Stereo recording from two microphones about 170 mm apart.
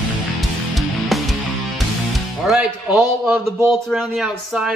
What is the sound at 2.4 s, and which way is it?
A man's voice, centre (ahead or behind).